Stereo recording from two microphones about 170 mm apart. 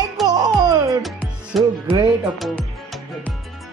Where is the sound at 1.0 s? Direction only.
Centre (ahead or behind).